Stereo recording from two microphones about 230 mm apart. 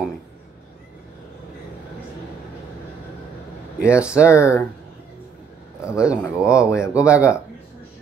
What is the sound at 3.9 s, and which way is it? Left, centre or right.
Speech, centre.